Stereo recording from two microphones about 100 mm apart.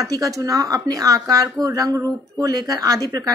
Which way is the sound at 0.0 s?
35° right (ahead or behind).